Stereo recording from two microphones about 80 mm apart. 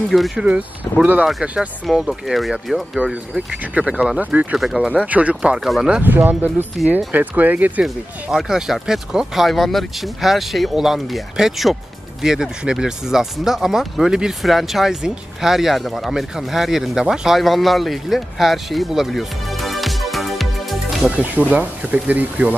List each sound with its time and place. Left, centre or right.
0.1 s speech: centre
0.9 s speech: left
1.4 s speech: centre
1.9 s speech: centre
3.0 s speech: centre
4.6 s speech: centre
6.0 s speech: right
7.8 s speech: centre
21.0 s speech: centre